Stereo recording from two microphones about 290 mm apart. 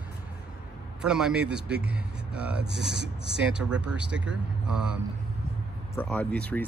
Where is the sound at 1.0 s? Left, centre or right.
Centre.